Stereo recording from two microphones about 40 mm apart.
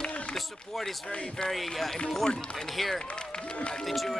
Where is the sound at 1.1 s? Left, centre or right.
Left.